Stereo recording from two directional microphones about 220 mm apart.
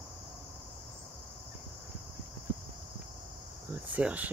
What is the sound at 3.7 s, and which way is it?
Cricket, 5° right (ahead or behind).